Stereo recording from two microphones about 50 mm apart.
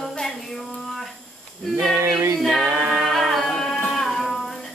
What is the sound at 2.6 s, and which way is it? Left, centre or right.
A capella, right.